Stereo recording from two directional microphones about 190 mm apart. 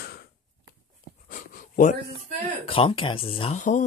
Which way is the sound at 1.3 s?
45° left (ahead or behind).